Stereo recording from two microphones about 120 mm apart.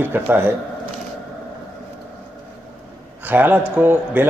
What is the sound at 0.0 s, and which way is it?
Speech, 20° right (ahead or behind).